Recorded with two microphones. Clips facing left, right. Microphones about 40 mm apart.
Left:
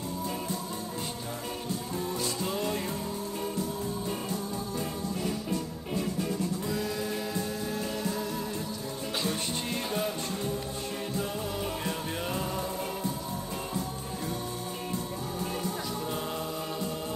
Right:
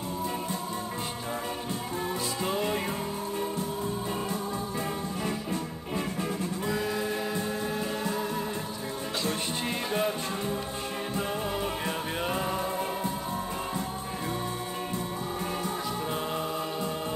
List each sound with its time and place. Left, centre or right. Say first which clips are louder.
2.4 s music: right 4 dB; right
6.7 s music: right 2 dB; right
9.8 s music: right 4 dB; centre
11.1 s music: right 3 dB; right
12.2 s a sound: right 3 dB; right
16.1 s choir: right 3 dB; right